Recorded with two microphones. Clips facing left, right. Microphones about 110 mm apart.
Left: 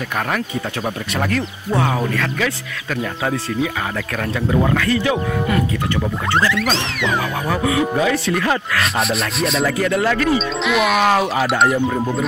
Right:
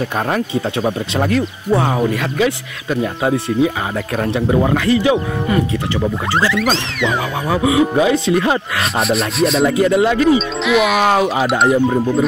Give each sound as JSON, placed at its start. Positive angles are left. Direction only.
{"t": 0.8, "sound": "speech", "side_deg": -20}
{"t": 6.5, "sound": "speech", "side_deg": 0}
{"t": 7.4, "sound": "speech", "side_deg": -15}
{"t": 8.9, "sound": "speech", "side_deg": 0}
{"t": 9.7, "sound": "speech", "side_deg": -20}
{"t": 10.3, "sound": "speech", "side_deg": 0}